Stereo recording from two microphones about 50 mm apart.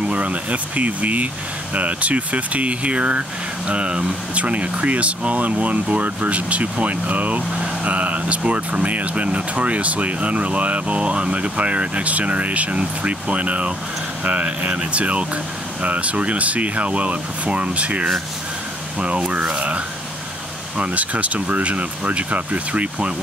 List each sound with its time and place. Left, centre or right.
0.0 s speech: right